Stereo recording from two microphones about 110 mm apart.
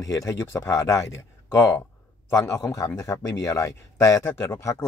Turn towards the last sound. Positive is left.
turn(degrees=30)  # may be behind; listen again after turning